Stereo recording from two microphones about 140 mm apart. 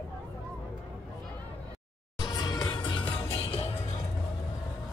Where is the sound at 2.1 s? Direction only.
30° left (ahead or behind).